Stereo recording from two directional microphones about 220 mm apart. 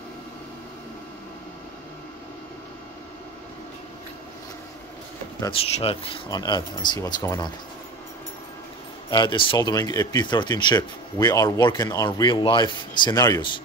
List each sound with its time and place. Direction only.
5.4 s speech: 25° left (ahead or behind)
9.1 s speech: 20° left (ahead or behind)